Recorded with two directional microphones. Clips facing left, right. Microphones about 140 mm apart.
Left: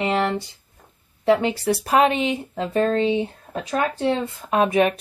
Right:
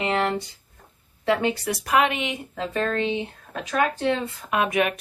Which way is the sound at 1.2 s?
25° left (ahead or behind).